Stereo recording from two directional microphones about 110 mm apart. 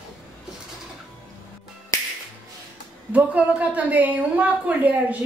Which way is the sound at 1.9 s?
30° left (ahead or behind).